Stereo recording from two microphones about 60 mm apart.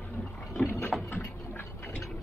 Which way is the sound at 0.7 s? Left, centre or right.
Left.